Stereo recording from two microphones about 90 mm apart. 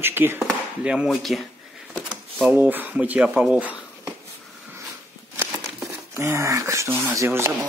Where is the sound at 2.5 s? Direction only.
20° right (ahead or behind).